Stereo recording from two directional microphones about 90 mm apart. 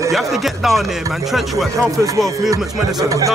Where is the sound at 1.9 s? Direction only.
35° right (ahead or behind).